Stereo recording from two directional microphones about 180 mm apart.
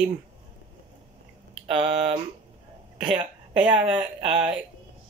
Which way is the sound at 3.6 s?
5° right (ahead or behind).